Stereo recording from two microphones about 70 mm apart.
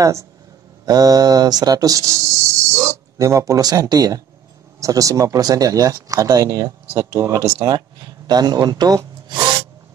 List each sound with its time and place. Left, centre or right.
0.0 s speech: right
0.8 s speech: right
7.7 s wood: right